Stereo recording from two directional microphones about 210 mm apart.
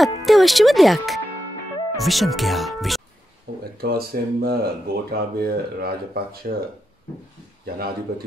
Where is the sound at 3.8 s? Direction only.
45° right (ahead or behind).